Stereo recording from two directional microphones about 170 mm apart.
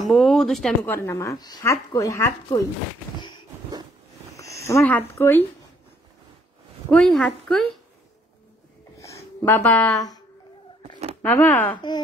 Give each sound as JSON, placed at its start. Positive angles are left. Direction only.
{"t": 0.0, "sound": "speech", "side_deg": 0}
{"t": 0.9, "sound": "speech", "side_deg": 15}
{"t": 3.2, "sound": "a sound", "side_deg": 25}
{"t": 4.4, "sound": "speech", "side_deg": 20}
{"t": 6.9, "sound": "a woman's voice", "side_deg": 5}
{"t": 8.9, "sound": "a sound", "side_deg": 20}
{"t": 11.2, "sound": "speech", "side_deg": 10}
{"t": 11.7, "sound": "speech", "side_deg": 25}